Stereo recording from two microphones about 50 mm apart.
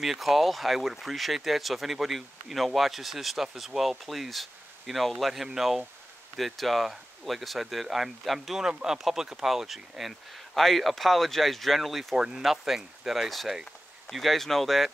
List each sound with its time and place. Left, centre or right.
0.0 s speech: centre